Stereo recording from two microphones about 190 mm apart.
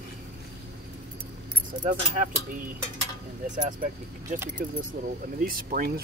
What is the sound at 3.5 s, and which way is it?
Speech, 40° right (ahead or behind).